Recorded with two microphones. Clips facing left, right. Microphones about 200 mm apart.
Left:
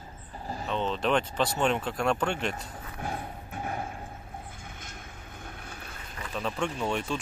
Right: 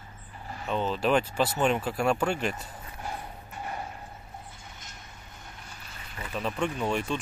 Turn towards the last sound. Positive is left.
turn(degrees=0)  # may be behind; listen again after turning